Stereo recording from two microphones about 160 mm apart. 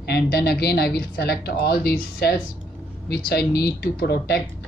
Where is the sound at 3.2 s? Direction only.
90° left.